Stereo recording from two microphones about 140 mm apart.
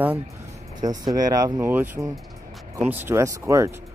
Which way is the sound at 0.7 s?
30° right (ahead or behind).